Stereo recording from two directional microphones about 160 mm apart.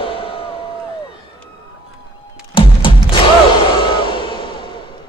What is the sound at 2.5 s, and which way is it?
Music, 30° left (ahead or behind).